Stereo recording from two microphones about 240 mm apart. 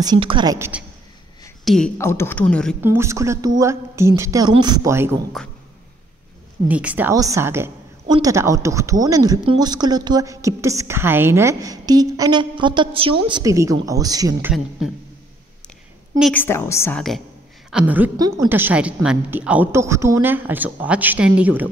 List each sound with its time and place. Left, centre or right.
0.0 s a woman's voice: centre
1.6 s a sound: centre
2.0 s a woman's voice: centre
2.8 s a woman's voice: centre
5.4 s speech: centre
6.7 s a woman's voice: centre
16.2 s a woman's voice: centre